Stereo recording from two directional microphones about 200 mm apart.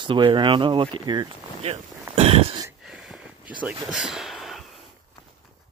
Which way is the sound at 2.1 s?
30° right (ahead or behind).